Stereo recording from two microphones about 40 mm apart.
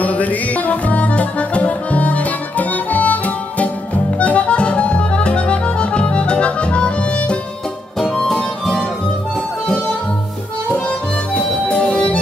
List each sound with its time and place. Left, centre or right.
0.0 s music: left
8.0 s music: centre
11.7 s music: left